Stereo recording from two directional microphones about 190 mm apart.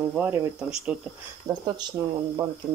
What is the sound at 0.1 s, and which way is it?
Speech, 5° right (ahead or behind).